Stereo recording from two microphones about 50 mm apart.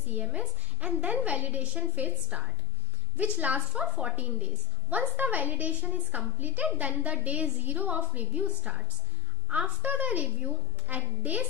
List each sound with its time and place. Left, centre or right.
0.1 s a woman's voice: right